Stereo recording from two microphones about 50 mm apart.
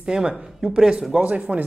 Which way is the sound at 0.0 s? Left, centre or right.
Centre.